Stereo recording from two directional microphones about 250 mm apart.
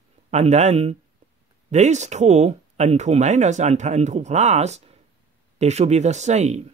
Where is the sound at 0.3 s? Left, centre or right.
Right.